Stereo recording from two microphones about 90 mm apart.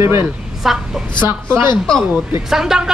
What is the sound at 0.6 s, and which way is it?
Speech, 5° right (ahead or behind).